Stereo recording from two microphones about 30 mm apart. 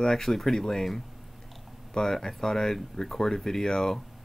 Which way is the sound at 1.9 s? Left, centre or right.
Centre.